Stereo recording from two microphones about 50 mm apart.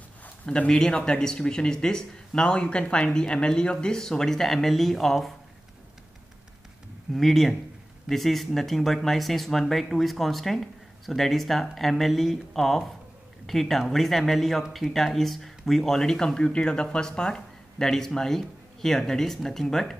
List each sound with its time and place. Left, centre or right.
0.5 s speech: centre
7.2 s speech: centre